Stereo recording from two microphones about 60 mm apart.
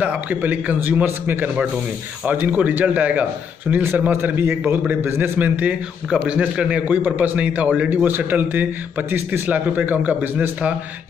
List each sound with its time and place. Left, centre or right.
0.0 s a man's voice: right
5.4 s a man's voice: right